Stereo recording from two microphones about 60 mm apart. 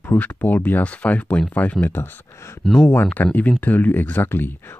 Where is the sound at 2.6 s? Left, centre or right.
Centre.